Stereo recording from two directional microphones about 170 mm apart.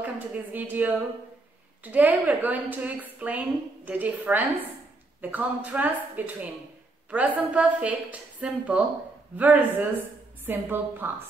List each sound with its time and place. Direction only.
0.0 s a woman's voice: 10° right (ahead or behind)